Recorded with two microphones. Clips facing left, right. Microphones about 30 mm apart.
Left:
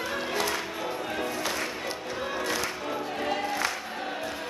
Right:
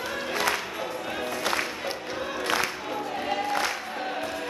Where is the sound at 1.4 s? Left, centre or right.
Right.